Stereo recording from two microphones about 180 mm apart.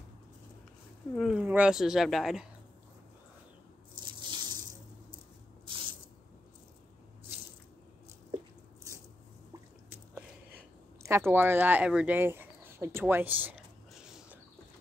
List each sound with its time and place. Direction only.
1.1 s speech: 5° right (ahead or behind)
4.0 s water: 25° right (ahead or behind)
5.7 s spray: 30° right (ahead or behind)
9.5 s a sound: 10° right (ahead or behind)